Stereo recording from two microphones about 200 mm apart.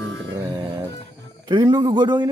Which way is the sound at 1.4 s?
20° right (ahead or behind).